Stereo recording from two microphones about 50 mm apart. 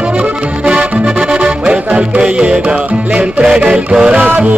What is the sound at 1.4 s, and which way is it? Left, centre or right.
Music, right.